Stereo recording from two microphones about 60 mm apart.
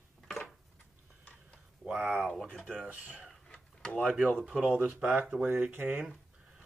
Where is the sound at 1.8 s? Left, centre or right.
Right.